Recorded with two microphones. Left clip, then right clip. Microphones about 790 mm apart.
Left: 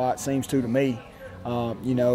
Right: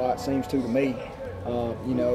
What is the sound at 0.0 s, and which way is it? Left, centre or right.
Speech, left.